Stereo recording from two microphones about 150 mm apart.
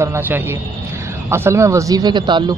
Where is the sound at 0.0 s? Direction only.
15° right (ahead or behind).